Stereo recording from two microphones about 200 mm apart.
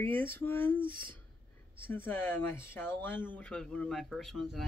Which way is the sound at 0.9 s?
45° right (ahead or behind).